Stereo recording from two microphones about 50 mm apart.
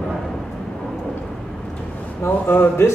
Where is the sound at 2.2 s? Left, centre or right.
Left.